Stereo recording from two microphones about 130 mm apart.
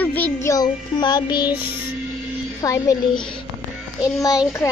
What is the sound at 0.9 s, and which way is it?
Music, 35° left (ahead or behind).